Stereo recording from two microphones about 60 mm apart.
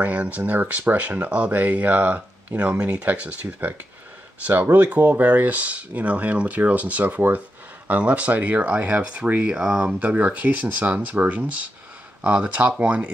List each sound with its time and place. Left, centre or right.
0.0 s speech: right
7.9 s speech: right